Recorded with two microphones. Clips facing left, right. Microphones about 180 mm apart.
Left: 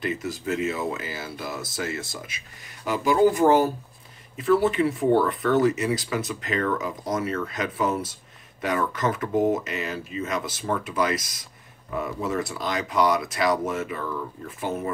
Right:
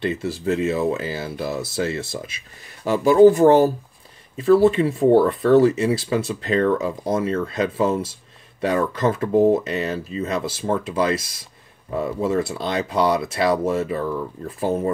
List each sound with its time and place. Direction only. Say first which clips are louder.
0.0 s speech: right 5 dB; 30° right (ahead or behind)